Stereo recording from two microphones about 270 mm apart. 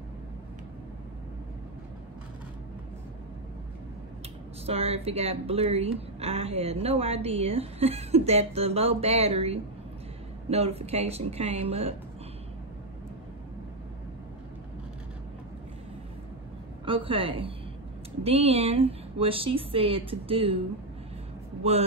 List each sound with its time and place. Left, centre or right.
4.6 s a woman's voice: right
16.8 s a woman's voice: centre
21.6 s a woman's voice: right